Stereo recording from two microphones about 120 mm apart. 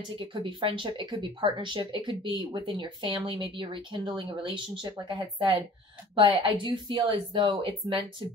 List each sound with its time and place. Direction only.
0.2 s speech: 45° right (ahead or behind)